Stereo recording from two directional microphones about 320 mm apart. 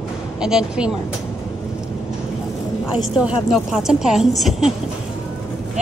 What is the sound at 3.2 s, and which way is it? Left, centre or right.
A woman's voice, centre.